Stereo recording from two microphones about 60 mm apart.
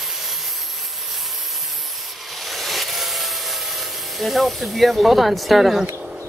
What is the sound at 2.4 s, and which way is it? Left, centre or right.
Rub, centre.